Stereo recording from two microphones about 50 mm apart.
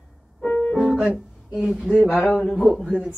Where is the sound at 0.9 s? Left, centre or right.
Centre.